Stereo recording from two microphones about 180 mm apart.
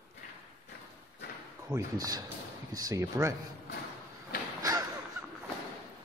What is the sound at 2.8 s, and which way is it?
Speech, 15° right (ahead or behind).